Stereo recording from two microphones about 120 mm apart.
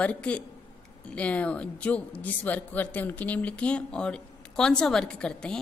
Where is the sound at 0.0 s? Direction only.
10° left (ahead or behind).